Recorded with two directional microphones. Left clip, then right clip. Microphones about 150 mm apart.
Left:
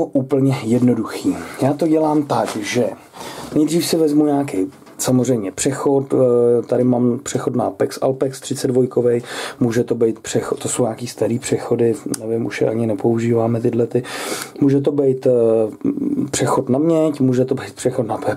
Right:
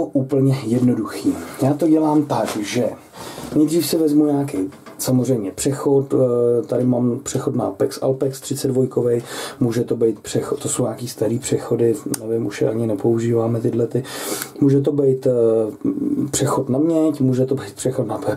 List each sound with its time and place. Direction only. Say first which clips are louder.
0.3 s speech: left 2 dB; centre (ahead or behind)
1.9 s speech: even; 25° left (ahead or behind)
2.3 s speech: left 2 dB; centre (ahead or behind)